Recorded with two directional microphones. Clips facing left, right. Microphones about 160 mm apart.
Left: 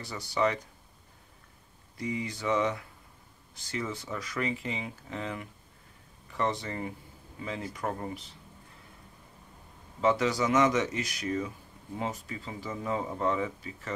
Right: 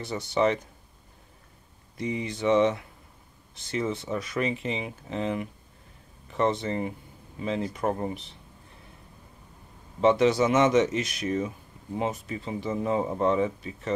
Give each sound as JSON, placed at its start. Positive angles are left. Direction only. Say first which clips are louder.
{"t": 0.0, "sound": "speech", "louder": "right 4 dB", "side_deg": -25}
{"t": 2.0, "sound": "speech", "louder": "right 4 dB", "side_deg": -25}
{"t": 9.9, "sound": "speech", "louder": "right 6 dB", "side_deg": -25}